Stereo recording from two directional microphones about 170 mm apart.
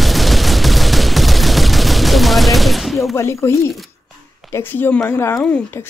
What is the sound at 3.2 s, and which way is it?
Speech, 15° left (ahead or behind).